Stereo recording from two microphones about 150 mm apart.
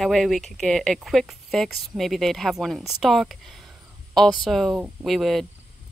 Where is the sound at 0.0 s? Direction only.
Centre (ahead or behind).